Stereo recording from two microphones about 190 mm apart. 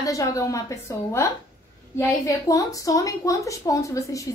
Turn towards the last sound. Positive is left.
turn(degrees=15)  # may be behind; listen again after turning